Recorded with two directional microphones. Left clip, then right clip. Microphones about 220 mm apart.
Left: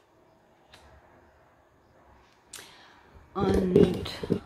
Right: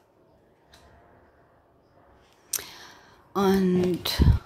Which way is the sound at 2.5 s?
50° right (ahead or behind).